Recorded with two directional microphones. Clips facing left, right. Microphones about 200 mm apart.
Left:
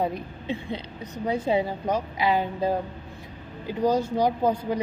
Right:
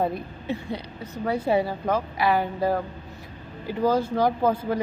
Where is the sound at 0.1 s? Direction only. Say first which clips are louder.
Right 1 dB; 15° left (ahead or behind).